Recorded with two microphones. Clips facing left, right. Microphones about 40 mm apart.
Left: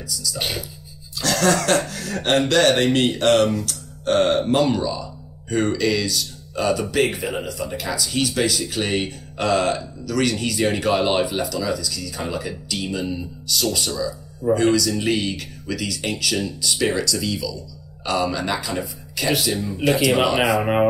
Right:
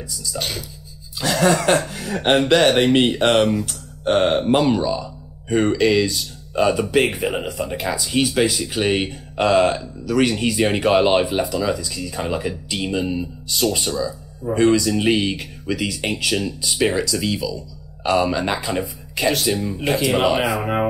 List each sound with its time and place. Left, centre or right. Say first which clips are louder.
1.1 s speech: right 2 dB; centre